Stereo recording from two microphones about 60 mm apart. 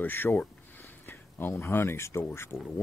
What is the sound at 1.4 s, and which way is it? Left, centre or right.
Speech, left.